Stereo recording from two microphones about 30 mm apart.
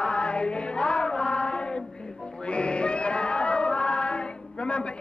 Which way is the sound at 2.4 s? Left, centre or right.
Left.